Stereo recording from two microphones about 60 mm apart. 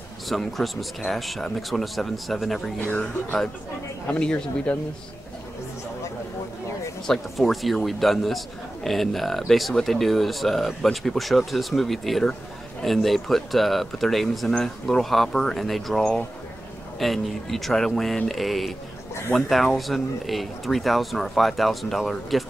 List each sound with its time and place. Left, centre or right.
0.3 s speech: centre
4.1 s speech: left
7.1 s speech: centre